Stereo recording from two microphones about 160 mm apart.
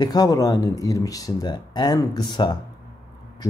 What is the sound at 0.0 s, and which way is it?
A man's voice, 25° left (ahead or behind).